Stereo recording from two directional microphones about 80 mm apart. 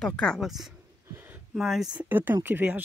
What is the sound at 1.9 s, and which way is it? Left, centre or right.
Speech, right.